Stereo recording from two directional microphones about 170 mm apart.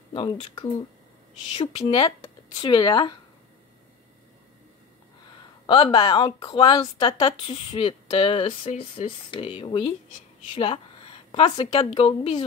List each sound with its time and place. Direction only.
0.1 s a woman's voice: 30° left (ahead or behind)
5.7 s a woman's voice: 30° left (ahead or behind)